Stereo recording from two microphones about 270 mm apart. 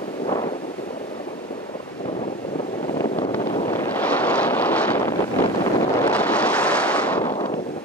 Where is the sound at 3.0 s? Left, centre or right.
Left.